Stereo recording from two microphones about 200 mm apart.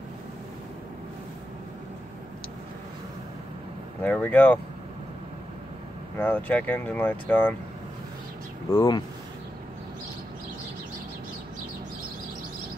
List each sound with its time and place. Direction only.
4.0 s speech: 10° left (ahead or behind)
6.1 s speech: 10° left (ahead or behind)
8.7 s speech: 20° left (ahead or behind)